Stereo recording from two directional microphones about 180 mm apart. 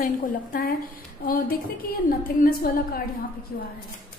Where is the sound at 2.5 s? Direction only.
55° left (ahead or behind).